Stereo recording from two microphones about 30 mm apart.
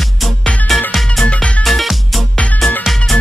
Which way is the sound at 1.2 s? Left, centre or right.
Left.